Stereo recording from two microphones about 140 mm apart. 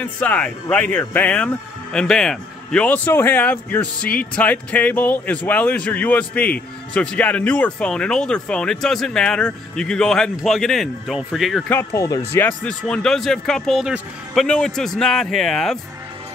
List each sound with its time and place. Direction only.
0.0 s speech: 10° left (ahead or behind)
11.7 s speech: 20° left (ahead or behind)
12.6 s speech: 5° left (ahead or behind)